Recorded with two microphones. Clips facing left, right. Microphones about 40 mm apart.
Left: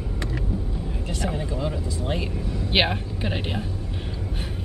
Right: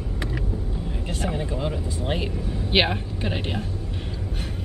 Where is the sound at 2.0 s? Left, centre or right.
Right.